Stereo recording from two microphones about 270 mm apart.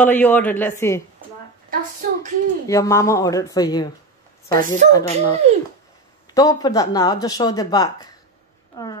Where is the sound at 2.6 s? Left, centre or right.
Centre.